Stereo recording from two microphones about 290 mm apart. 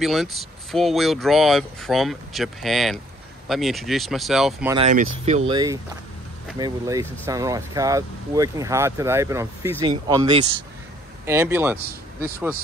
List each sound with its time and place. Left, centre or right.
0.0 s speech: centre
4.7 s speech: right
5.5 s speech: centre